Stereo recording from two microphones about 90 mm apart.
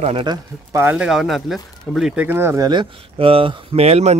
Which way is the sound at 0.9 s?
10° right (ahead or behind).